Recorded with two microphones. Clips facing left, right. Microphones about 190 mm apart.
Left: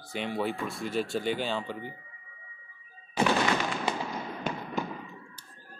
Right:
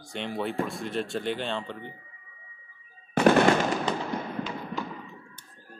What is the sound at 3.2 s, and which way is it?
Fireworks, 55° right (ahead or behind).